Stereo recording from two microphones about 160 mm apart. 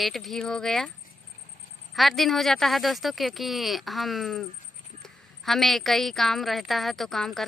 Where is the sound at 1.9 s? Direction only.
Centre (ahead or behind).